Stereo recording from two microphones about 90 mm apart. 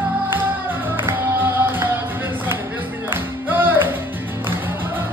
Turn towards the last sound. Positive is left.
turn(degrees=-20)  # may be behind; listen again after turning